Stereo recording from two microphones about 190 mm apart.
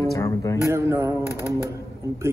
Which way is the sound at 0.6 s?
15° right (ahead or behind).